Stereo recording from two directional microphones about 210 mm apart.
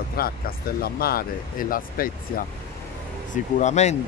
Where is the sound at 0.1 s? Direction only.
45° left (ahead or behind).